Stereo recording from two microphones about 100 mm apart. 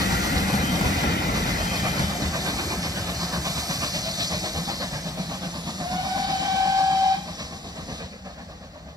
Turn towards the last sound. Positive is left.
turn(degrees=-40)  # may be behind; listen again after turning